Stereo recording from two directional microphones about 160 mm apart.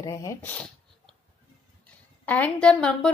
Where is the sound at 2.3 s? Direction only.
10° left (ahead or behind).